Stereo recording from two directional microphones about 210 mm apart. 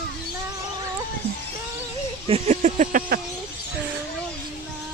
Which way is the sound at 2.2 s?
30° right (ahead or behind).